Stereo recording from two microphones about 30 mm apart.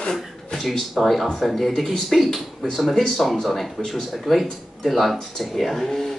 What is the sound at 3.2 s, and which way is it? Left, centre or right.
Speech, centre.